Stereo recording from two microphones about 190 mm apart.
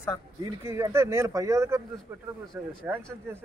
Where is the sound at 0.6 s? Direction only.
15° right (ahead or behind).